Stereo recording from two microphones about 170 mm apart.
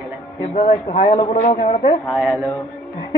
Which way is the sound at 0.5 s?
45° left (ahead or behind).